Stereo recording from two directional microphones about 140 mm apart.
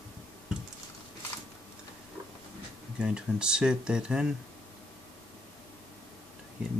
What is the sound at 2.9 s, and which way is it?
Speech, 5° right (ahead or behind).